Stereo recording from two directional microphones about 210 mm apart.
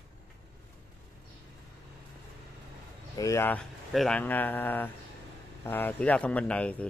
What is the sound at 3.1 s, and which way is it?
Speech, 15° left (ahead or behind).